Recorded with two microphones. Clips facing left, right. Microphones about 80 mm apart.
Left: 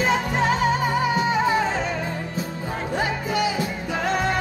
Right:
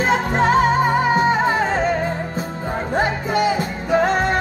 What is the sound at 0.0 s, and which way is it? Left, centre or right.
Music, right.